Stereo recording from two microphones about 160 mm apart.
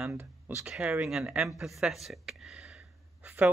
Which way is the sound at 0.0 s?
10° right (ahead or behind).